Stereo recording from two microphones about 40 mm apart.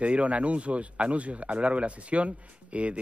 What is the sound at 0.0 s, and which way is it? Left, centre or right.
A man's voice, right.